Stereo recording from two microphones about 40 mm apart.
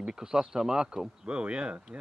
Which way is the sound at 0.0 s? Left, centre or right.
Centre.